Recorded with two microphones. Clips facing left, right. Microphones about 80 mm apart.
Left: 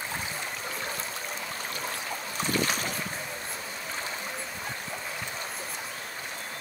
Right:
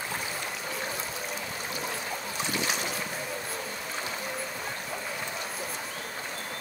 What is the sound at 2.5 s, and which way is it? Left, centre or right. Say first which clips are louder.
Boat: left 3 dB; left.